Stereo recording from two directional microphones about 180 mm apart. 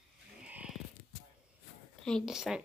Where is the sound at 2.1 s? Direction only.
Centre (ahead or behind).